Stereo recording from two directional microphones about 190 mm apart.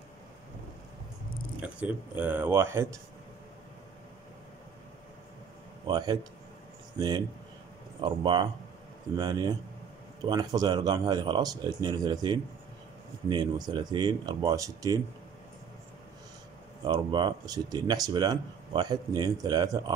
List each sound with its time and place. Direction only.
1.6 s speech: 10° right (ahead or behind)
5.9 s speech: 20° right (ahead or behind)
16.8 s speech: 25° right (ahead or behind)